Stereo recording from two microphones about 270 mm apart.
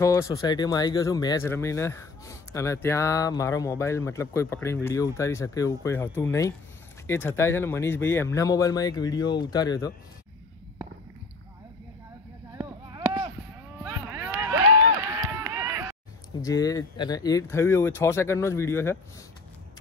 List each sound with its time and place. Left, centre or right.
0.0 s speech: centre
12.5 s a sound: centre
14.1 s run: centre
16.3 s speech: centre